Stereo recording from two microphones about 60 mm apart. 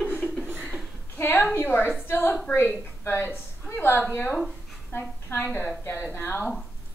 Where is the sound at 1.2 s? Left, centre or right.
Left.